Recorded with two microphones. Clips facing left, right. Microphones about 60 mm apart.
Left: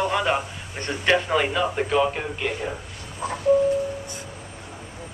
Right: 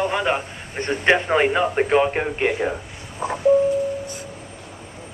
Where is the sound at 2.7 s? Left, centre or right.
Right.